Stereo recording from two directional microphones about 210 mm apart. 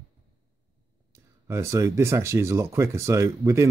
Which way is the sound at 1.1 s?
15° right (ahead or behind).